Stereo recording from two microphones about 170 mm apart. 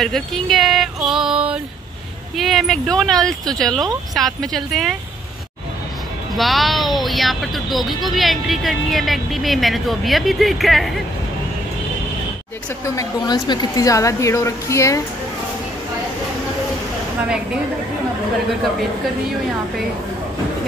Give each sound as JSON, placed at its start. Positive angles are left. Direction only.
{"t": 0.0, "sound": "a sound", "side_deg": 0}
{"t": 2.3, "sound": "speech", "side_deg": 0}
{"t": 6.3, "sound": "speech", "side_deg": 0}
{"t": 12.8, "sound": "a woman's voice", "side_deg": 20}